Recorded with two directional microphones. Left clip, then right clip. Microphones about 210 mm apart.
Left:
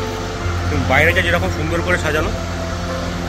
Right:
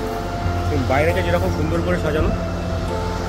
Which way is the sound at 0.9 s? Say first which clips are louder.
Left 5 dB; 5° right (ahead or behind).